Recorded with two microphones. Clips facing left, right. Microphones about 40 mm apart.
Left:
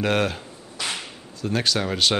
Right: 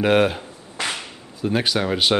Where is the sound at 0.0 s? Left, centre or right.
Centre.